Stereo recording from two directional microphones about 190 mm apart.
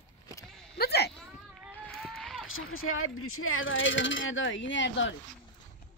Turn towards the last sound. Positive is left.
turn(degrees=75)  # may be behind; listen again after turning